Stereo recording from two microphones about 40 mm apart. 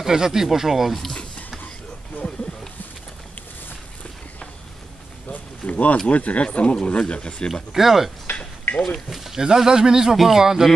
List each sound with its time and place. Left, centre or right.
0.0 s speech: centre
5.3 s a sound: left
6.0 s speech: left
7.7 s speech: centre
8.3 s a sound: left
9.1 s speech: centre
9.4 s speech: centre